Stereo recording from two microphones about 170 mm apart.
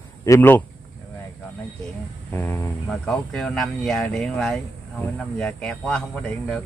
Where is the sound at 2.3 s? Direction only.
10° left (ahead or behind).